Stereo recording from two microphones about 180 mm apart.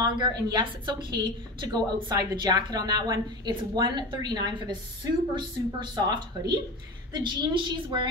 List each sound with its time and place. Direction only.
0.0 s a woman's voice: 20° right (ahead or behind)